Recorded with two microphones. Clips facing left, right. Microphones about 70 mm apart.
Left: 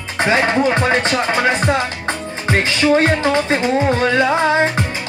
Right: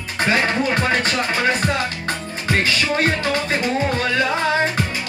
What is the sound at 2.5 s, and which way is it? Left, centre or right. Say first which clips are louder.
Music: left 5 dB; left.